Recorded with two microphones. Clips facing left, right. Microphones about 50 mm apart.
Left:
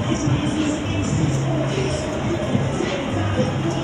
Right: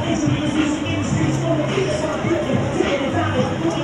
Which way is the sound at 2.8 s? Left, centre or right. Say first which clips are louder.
Right 4 dB; right.